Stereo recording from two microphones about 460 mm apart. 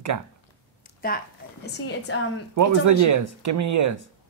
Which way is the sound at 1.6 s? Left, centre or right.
Left.